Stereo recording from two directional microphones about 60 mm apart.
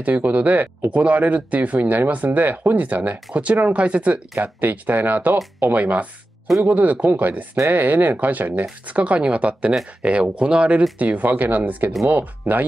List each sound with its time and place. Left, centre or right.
0.0 s speech: right